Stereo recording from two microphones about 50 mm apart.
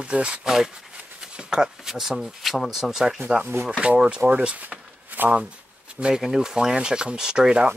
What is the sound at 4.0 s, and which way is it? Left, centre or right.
Speech, centre.